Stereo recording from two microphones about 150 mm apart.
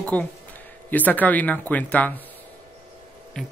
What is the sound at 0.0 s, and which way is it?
Speech, 10° left (ahead or behind).